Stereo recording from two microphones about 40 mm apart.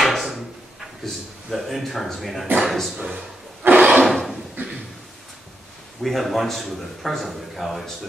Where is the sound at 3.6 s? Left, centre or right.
Right.